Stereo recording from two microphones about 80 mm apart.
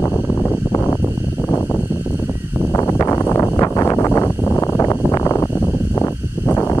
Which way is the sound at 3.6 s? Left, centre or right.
Left.